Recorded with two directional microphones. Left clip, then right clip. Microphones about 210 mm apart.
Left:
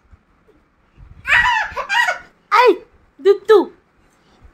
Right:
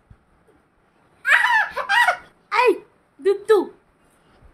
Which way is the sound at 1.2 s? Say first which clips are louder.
Left 2 dB; 20° right (ahead or behind).